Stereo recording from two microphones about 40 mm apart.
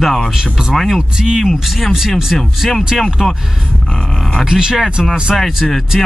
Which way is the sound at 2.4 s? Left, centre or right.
Centre.